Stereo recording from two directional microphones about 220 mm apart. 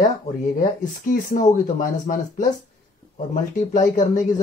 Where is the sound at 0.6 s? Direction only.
35° left (ahead or behind).